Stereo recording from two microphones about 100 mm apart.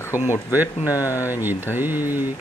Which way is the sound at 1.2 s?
20° right (ahead or behind).